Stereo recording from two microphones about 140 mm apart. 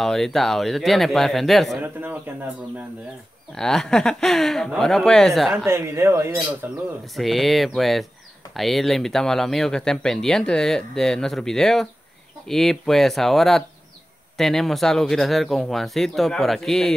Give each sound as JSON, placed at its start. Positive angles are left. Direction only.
{"t": 0.0, "sound": "speech", "side_deg": 0}
{"t": 1.8, "sound": "a man's voice", "side_deg": -15}
{"t": 3.5, "sound": "speech", "side_deg": 5}
{"t": 5.7, "sound": "speech", "side_deg": -20}
{"t": 7.2, "sound": "speech", "side_deg": 0}